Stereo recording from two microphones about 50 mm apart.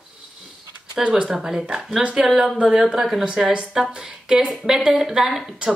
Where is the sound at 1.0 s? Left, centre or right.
Centre.